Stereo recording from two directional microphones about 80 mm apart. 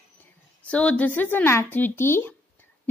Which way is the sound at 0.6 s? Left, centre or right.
Centre.